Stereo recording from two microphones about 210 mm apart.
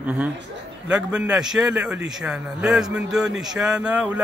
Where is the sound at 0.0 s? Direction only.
5° right (ahead or behind).